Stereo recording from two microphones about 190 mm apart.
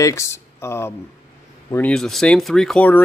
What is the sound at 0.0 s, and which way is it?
Speech, 15° left (ahead or behind).